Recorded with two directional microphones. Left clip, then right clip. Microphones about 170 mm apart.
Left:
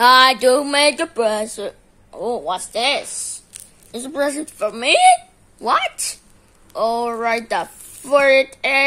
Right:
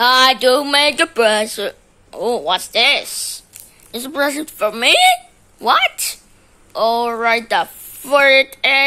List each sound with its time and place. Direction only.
0.0 s speech: 10° left (ahead or behind)